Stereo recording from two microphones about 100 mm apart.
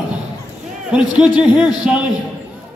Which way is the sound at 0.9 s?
10° right (ahead or behind).